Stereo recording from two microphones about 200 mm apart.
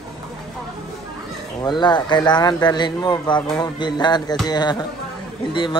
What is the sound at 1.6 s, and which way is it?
Speech, 20° left (ahead or behind).